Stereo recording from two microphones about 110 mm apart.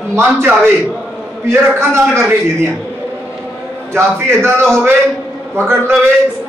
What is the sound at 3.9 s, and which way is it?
Speech, 25° right (ahead or behind).